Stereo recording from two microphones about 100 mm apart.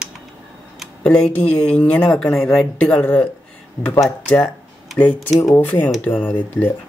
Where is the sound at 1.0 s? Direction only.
15° left (ahead or behind).